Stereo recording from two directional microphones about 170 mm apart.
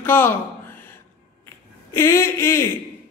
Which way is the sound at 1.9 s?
15° left (ahead or behind).